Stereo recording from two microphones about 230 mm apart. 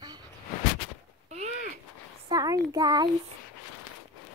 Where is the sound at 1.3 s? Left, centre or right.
Right.